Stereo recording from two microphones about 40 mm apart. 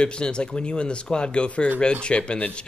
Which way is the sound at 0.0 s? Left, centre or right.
Left.